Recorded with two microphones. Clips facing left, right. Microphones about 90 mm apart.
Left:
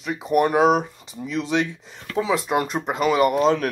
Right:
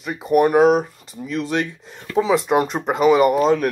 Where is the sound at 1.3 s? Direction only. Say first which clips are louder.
Right 1 dB; 20° left (ahead or behind).